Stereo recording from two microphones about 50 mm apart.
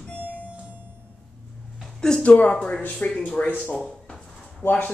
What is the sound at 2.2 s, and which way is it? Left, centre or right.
Speech, left.